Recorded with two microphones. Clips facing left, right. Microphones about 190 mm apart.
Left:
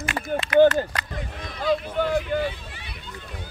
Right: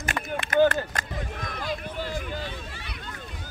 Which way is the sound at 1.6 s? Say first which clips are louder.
Left 11 dB; 60° left (ahead or behind).